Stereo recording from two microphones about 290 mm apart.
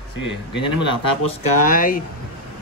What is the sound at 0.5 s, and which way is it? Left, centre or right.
Speech, centre.